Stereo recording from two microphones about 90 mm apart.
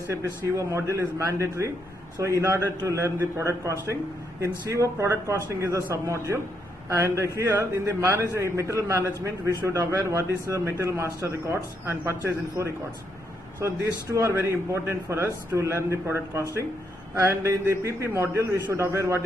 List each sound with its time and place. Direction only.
0.1 s a man's voice: 35° right (ahead or behind)
14.1 s a man's voice: 30° right (ahead or behind)